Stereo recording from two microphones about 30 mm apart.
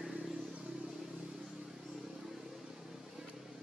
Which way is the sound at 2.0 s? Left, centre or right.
Centre.